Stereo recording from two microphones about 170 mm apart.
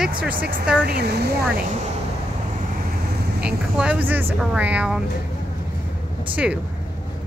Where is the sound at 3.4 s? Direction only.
5° right (ahead or behind).